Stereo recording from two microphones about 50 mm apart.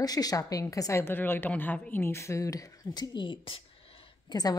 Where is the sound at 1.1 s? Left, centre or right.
Left.